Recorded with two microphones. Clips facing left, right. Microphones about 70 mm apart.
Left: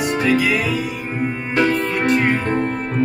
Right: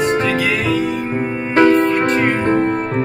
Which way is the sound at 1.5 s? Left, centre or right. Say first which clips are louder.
Right 7 dB; right.